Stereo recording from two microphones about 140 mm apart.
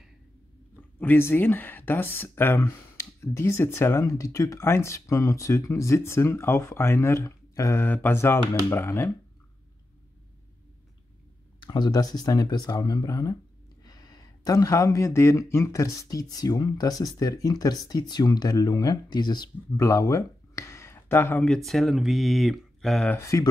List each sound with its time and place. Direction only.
0.9 s speech: 15° left (ahead or behind)
11.6 s speech: 30° left (ahead or behind)
21.6 s speech: centre (ahead or behind)
23.1 s speech: 20° left (ahead or behind)